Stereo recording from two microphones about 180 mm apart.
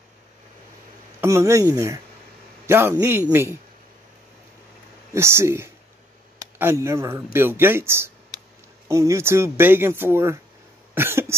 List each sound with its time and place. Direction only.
1.2 s speech: 15° right (ahead or behind)
5.1 s speech: 15° right (ahead or behind)